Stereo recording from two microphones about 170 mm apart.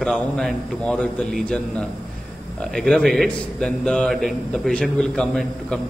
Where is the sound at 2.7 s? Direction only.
Centre (ahead or behind).